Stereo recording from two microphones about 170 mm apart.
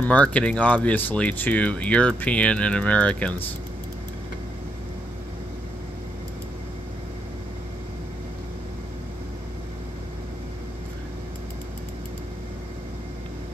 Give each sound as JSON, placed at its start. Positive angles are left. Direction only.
{"t": 0.0, "sound": "speech", "side_deg": 10}